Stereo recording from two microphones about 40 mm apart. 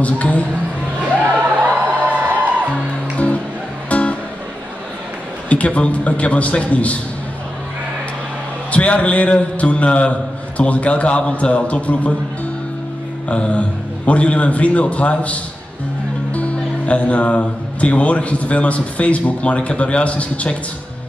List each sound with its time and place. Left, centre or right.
0.0 s speech: left
1.5 s music: right
3.9 s music: left
5.5 s speech: left
8.7 s speech: left
13.3 s speech: left